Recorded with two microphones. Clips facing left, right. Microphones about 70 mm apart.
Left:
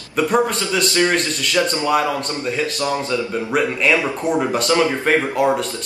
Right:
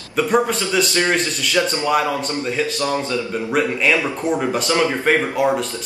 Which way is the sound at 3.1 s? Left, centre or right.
Centre.